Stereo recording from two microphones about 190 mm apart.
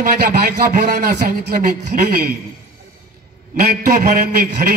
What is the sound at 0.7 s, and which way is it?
A man's voice, 45° right (ahead or behind).